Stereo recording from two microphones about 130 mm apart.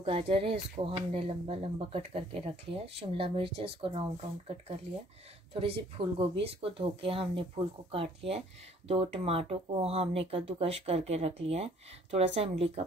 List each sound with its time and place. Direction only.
0.0 s speech: 45° right (ahead or behind)
5.5 s speech: 40° right (ahead or behind)